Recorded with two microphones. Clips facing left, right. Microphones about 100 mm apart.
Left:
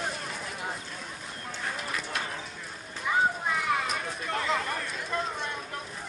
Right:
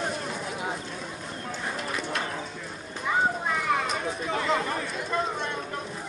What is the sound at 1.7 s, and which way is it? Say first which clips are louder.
Bird: right 3 dB; centre (ahead or behind).